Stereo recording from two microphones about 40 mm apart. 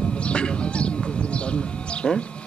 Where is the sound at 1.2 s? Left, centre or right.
Left.